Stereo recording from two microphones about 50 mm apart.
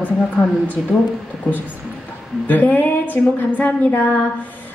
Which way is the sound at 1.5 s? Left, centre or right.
Centre.